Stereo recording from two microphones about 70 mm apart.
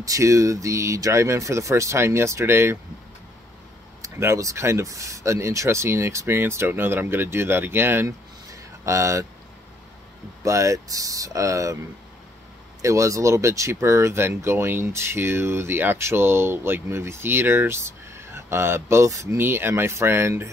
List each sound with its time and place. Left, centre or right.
0.0 s speech: right
4.2 s speech: right
8.5 s a sound: right
10.4 s speech: right
12.8 s speech: right
19.3 s speech: right